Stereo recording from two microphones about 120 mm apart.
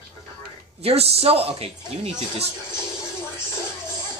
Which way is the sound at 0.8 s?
55° right (ahead or behind).